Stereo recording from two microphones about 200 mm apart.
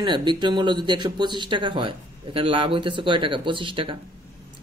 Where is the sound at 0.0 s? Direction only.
25° right (ahead or behind).